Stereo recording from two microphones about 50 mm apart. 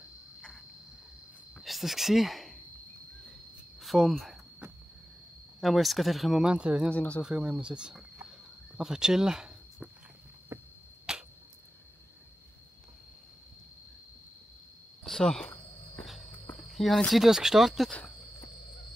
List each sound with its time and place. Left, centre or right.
1.6 s a sound: centre
3.8 s cricket: centre
4.1 s speech: centre
5.6 s speech: centre
6.4 s speech: right
6.9 s speech: left
7.2 s speech: right
10.5 s arrow: right
11.1 s a sound: centre
15.0 s a sound: centre
16.0 s walk: centre
16.7 s speech: centre
17.1 s speech: centre